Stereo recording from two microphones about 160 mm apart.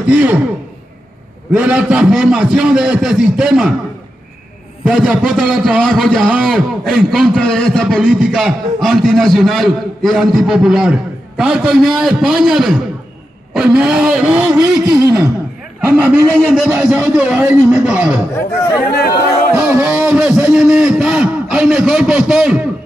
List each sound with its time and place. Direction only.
0.1 s speech: 10° right (ahead or behind)
1.5 s a man's voice: 10° right (ahead or behind)
4.8 s a man's voice: 5° right (ahead or behind)
16.0 s speech: 5° right (ahead or behind)
18.3 s speech: 15° left (ahead or behind)
19.5 s a man's voice: 10° right (ahead or behind)